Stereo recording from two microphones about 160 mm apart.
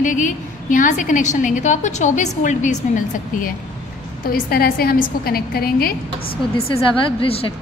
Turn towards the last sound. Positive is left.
turn(degrees=35)  # may be behind; listen again after turning